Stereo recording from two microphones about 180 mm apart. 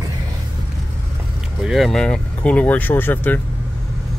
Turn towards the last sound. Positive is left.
turn(degrees=10)  # may be behind; listen again after turning